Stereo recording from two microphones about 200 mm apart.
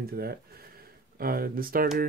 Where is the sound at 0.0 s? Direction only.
50° right (ahead or behind).